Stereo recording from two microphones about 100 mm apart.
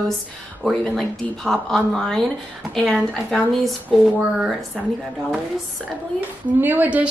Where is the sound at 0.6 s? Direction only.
5° left (ahead or behind).